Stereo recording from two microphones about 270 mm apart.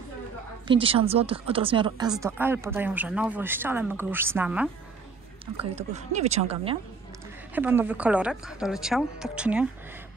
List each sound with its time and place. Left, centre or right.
0.7 s speech: centre
5.8 s speech: right
7.5 s a woman's voice: centre